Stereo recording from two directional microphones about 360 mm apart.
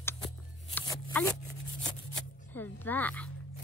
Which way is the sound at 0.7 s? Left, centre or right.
Centre.